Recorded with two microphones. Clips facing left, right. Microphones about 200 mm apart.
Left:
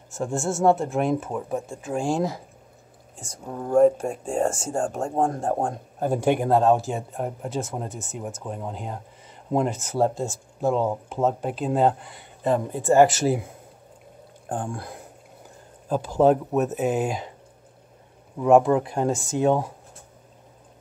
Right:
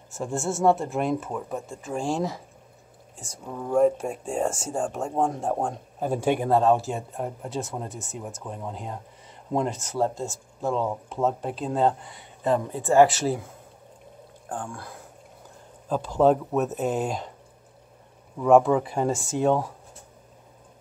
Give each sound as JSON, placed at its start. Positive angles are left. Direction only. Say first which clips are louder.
{"t": 0.1, "sound": "speech", "louder": "left 2 dB", "side_deg": 0}
{"t": 3.6, "sound": "speech", "louder": "left 3 dB", "side_deg": 0}
{"t": 14.5, "sound": "speech", "louder": "left 4 dB", "side_deg": 25}
{"t": 15.9, "sound": "speech", "louder": "left 1 dB", "side_deg": 5}
{"t": 18.4, "sound": "speech", "louder": "left 1 dB", "side_deg": 5}